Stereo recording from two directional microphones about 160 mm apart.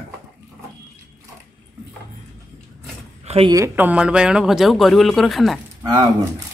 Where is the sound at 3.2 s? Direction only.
40° right (ahead or behind).